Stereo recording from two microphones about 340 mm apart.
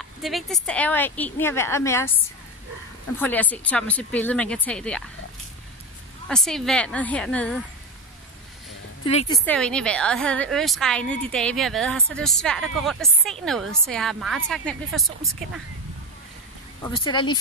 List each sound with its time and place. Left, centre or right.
0.0 s a woman's voice: centre
3.2 s a woman's voice: centre
6.2 s a woman's voice: centre
9.0 s speech: centre
9.5 s a woman's voice: centre
16.8 s speech: centre